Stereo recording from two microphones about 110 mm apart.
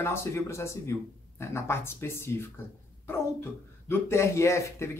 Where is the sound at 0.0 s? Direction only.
25° left (ahead or behind).